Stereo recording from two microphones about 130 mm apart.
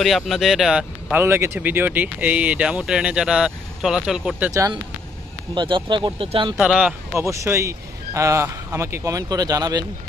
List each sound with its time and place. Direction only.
0.0 s speech: centre (ahead or behind)
1.1 s speech: 20° right (ahead or behind); by 4.4 s 5° right (ahead or behind)
5.5 s speech: 40° right (ahead or behind)
6.7 s speech: 5° right (ahead or behind)
7.2 s speech: 20° right (ahead or behind)